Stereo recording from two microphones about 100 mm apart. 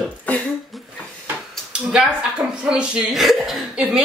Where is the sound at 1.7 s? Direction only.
5° right (ahead or behind).